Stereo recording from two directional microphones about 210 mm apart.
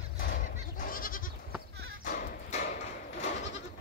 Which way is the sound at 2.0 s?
40° left (ahead or behind).